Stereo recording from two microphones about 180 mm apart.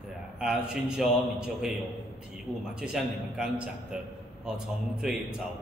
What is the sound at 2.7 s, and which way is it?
A man's voice, 5° right (ahead or behind).